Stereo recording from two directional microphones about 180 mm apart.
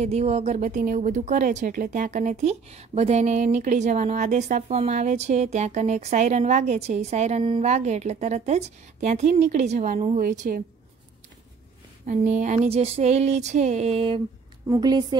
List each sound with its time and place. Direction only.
0.0 s speech: 35° right (ahead or behind)
12.1 s speech: 40° right (ahead or behind)
14.7 s a woman's voice: 20° right (ahead or behind)